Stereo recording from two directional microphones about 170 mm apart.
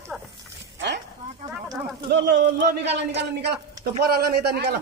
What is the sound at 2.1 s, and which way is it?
Speech, 75° right (ahead or behind).